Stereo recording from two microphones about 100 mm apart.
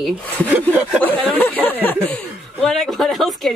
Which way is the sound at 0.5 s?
15° right (ahead or behind).